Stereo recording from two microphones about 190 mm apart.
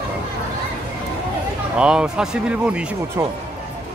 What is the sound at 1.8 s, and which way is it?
Speech, 5° right (ahead or behind).